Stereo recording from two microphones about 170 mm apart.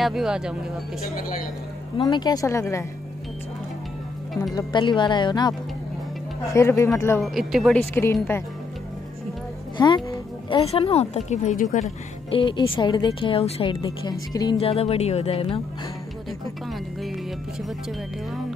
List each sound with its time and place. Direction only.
0.0 s speech: centre (ahead or behind)
2.0 s speech: 25° left (ahead or behind)
4.6 s speech: 25° left (ahead or behind)
7.2 s speech: centre (ahead or behind)
7.9 s speech: 15° left (ahead or behind)
9.8 s a woman's voice: 25° left (ahead or behind); by 11.6 s 45° left (ahead or behind)
12.3 s speech: 30° left (ahead or behind)
14.6 s speech: 35° left (ahead or behind)